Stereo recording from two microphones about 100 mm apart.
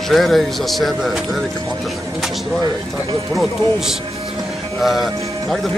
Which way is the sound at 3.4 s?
5° right (ahead or behind).